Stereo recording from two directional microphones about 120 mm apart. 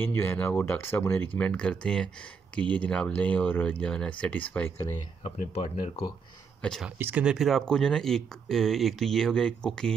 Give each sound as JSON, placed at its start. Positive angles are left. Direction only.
{"t": 0.0, "sound": "speech", "side_deg": 15}
{"t": 5.2, "sound": "speech", "side_deg": 55}
{"t": 6.6, "sound": "speech", "side_deg": 5}
{"t": 7.0, "sound": "speech", "side_deg": -15}